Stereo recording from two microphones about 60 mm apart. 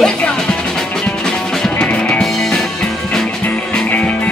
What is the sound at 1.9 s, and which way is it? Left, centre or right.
Music, centre.